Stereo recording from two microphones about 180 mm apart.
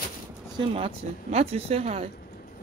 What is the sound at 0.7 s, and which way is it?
Speech, 35° right (ahead or behind).